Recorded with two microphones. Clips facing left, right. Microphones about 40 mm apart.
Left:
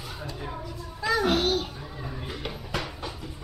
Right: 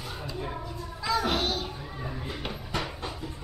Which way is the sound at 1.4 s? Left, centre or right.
Left.